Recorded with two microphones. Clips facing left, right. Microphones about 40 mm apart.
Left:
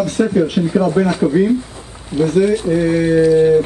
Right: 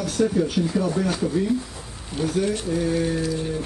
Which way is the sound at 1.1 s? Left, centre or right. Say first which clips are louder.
Left 8 dB; left.